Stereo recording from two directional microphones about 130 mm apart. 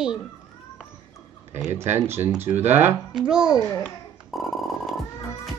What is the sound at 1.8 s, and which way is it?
Speech, 20° right (ahead or behind).